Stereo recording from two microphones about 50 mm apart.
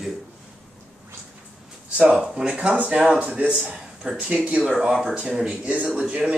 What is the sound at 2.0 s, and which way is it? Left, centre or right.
Speech, centre.